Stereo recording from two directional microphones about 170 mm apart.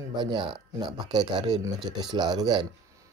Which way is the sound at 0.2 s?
25° right (ahead or behind).